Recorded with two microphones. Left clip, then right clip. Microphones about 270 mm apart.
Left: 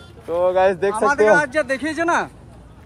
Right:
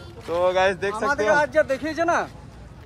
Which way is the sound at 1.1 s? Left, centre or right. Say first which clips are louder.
Left 4 dB; left.